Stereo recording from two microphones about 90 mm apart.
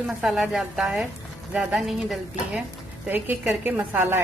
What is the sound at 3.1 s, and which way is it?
A woman's voice, 20° right (ahead or behind).